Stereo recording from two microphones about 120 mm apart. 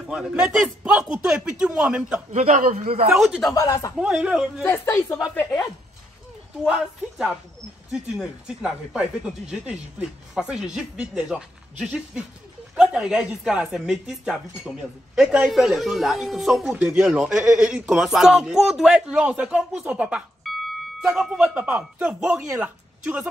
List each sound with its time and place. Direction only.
0.0 s speech: 5° right (ahead or behind)
2.3 s a man's voice: 70° right (ahead or behind)
3.1 s speech: 5° right (ahead or behind)
3.5 s speech: 30° left (ahead or behind)
4.0 s speech: 10° right (ahead or behind)
4.6 s speech: 20° left (ahead or behind)
6.6 s a woman's voice: 5° right (ahead or behind)